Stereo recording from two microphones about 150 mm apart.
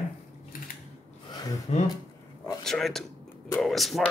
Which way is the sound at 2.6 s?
Centre (ahead or behind).